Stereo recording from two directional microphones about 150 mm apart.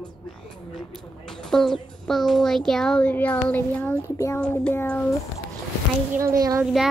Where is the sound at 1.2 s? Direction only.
5° left (ahead or behind).